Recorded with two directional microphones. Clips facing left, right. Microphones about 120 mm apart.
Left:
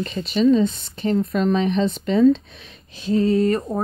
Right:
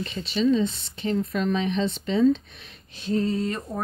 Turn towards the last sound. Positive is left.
turn(degrees=45)  # may be behind; listen again after turning